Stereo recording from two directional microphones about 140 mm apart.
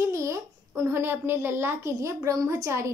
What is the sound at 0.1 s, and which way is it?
A child's voice, 20° right (ahead or behind).